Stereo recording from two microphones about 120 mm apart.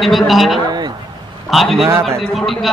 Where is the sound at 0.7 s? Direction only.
35° right (ahead or behind).